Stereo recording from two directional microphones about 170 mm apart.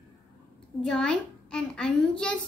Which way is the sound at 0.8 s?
5° left (ahead or behind).